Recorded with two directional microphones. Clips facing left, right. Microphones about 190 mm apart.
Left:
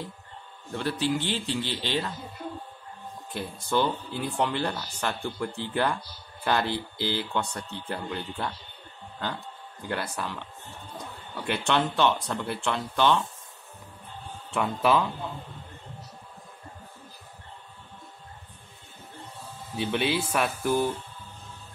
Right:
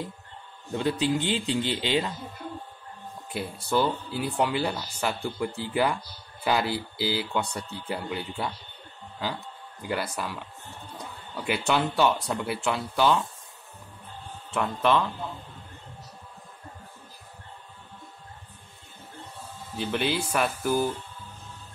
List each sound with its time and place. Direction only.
0.7 s speech: 15° right (ahead or behind)
3.3 s speech: 5° right (ahead or behind)
9.8 s speech: 5° right (ahead or behind)
14.5 s speech: 5° left (ahead or behind)
19.8 s speech: centre (ahead or behind)